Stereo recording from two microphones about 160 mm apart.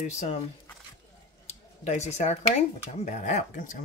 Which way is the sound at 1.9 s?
45° left (ahead or behind).